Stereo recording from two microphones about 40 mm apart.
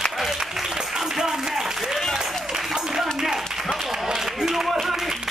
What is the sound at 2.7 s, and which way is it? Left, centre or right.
Clapping, centre.